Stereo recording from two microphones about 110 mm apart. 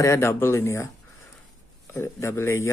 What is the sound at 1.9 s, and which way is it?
Speech, 25° left (ahead or behind).